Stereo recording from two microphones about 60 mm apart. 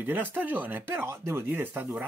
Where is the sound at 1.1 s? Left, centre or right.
Right.